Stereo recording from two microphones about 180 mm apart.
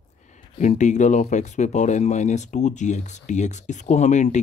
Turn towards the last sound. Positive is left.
turn(degrees=40)  # may be behind; listen again after turning